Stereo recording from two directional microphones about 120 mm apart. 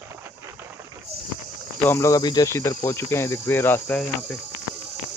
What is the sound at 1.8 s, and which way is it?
Cricket, 25° left (ahead or behind).